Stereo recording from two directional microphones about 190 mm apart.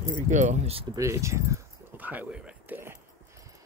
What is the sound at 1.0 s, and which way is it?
Keys jangling, 15° right (ahead or behind).